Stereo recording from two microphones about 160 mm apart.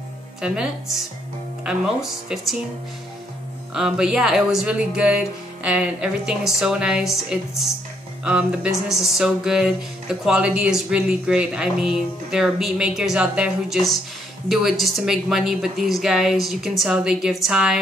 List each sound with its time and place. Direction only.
0.4 s speech: 5° right (ahead or behind)
3.7 s speech: 5° right (ahead or behind)